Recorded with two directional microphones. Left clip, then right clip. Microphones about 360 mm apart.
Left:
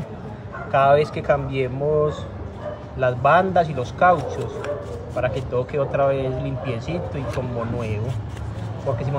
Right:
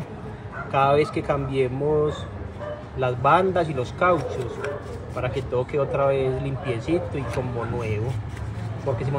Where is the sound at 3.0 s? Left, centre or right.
Centre.